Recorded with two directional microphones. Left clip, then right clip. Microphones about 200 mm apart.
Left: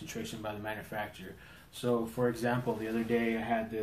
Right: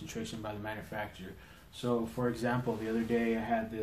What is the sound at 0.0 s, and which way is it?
Speech, centre (ahead or behind).